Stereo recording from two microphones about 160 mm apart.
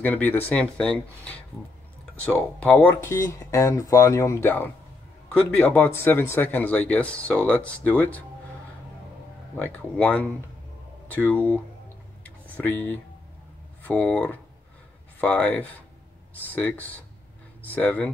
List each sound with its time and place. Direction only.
0.0 s speech: 10° left (ahead or behind)
9.6 s speech: 10° left (ahead or behind)
12.2 s a sound: 10° left (ahead or behind)
13.8 s speech: 5° left (ahead or behind)